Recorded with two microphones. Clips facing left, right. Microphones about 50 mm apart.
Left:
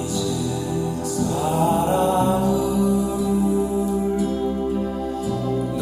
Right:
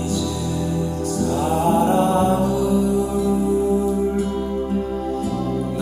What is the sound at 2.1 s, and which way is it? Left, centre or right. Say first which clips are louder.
Mantra: right 1 dB; right.